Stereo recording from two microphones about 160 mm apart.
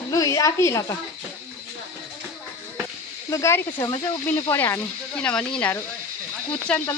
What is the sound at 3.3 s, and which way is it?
Speech, 15° left (ahead or behind).